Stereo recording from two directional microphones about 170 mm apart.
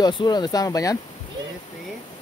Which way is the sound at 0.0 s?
25° left (ahead or behind).